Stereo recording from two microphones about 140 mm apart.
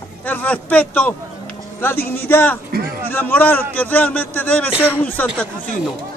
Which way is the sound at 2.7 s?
90° right.